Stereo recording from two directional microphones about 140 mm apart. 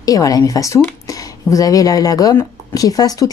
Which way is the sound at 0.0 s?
25° left (ahead or behind).